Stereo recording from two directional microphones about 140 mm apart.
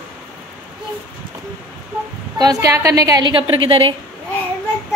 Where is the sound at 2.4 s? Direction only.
25° right (ahead or behind); by 3.9 s 40° right (ahead or behind).